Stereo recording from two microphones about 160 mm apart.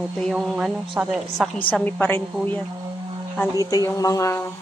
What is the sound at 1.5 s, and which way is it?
Speech, 10° left (ahead or behind).